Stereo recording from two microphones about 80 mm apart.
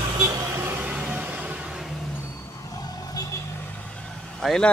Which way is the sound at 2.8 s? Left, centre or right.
Left.